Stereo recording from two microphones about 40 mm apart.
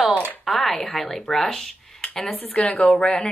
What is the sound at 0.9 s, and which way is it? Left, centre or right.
Speech, centre.